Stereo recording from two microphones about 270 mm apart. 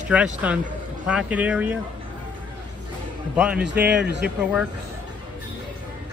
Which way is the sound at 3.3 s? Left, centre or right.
Centre.